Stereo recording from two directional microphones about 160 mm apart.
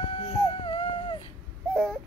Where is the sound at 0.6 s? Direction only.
25° left (ahead or behind).